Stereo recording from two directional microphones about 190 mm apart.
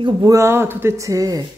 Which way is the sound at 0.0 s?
20° right (ahead or behind).